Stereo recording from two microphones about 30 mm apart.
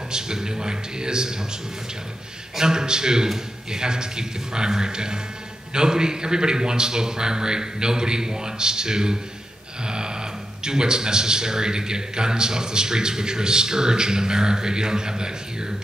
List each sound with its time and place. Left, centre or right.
0.1 s a man's voice: right
2.5 s a man's voice: right